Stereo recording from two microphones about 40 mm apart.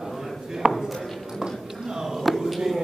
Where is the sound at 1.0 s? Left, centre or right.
Centre.